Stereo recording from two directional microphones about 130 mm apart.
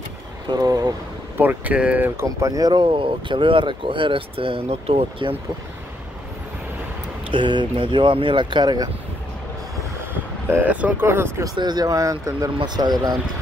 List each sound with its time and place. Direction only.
0.5 s speech: 30° right (ahead or behind)
1.4 s speech: 15° right (ahead or behind); by 5.3 s 50° right (ahead or behind)
7.2 s speech: 40° right (ahead or behind)
10.5 s speech: 10° right (ahead or behind)
11.5 s speech: 30° right (ahead or behind)